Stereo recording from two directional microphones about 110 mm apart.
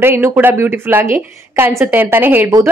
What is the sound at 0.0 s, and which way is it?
A woman's voice, 20° right (ahead or behind).